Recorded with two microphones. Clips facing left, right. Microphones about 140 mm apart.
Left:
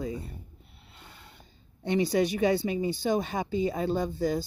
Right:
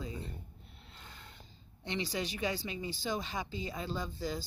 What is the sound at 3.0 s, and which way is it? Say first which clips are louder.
Speech: left 9 dB; 50° left (ahead or behind).